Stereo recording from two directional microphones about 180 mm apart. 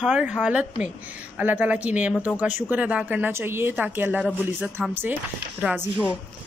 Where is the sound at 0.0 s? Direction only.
5° right (ahead or behind).